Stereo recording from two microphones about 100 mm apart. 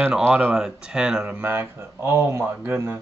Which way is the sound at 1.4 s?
20° right (ahead or behind).